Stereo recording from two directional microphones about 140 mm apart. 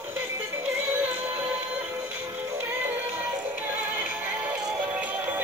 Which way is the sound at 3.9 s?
10° right (ahead or behind).